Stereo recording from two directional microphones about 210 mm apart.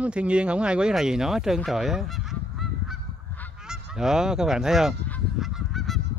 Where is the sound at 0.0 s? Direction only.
5° right (ahead or behind).